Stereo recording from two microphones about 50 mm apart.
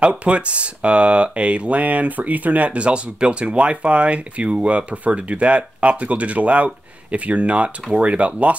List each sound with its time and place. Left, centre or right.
0.2 s speech: right